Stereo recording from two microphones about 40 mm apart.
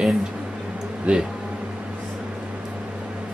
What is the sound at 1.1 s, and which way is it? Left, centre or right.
Speech, right.